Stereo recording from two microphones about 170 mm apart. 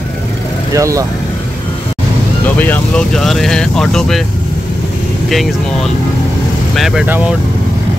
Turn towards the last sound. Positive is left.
turn(degrees=-10)  # may be behind; listen again after turning